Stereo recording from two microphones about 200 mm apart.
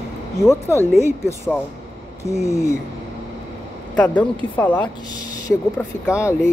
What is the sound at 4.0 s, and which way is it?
Speech, 10° left (ahead or behind).